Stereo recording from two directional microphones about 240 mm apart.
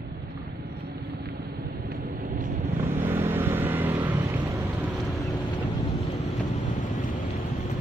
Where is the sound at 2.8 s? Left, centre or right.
Centre.